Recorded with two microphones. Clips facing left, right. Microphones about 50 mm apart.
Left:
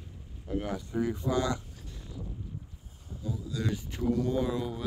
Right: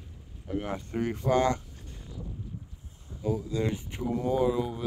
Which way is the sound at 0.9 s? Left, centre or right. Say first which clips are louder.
Right 3 dB; right.